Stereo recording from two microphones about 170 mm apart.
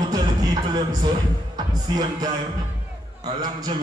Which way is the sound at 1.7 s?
25° right (ahead or behind).